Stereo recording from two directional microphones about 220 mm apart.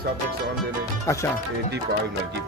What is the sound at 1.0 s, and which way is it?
Speech, 15° left (ahead or behind).